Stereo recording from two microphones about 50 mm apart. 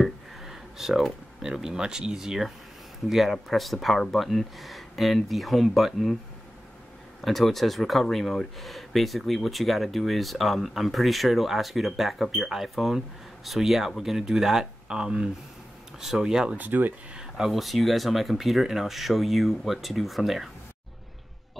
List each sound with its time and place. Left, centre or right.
0.5 s a sound: centre
1.4 s speech: centre
7.2 s speech: centre
16.0 s speech: centre
16.5 s speech: right
17.1 s speech: centre